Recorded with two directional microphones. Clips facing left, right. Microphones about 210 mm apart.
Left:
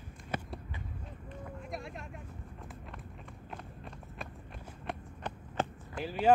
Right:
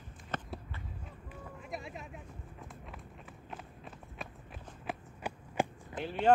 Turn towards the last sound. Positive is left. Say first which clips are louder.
# left 1 dB
turn(degrees=0)  # may be behind; listen again after turning